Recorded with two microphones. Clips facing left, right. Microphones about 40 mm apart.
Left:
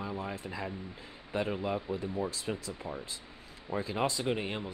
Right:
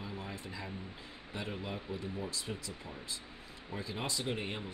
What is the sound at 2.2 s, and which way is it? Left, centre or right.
Speech, left.